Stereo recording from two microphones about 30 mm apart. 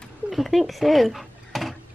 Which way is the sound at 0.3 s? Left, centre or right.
Centre.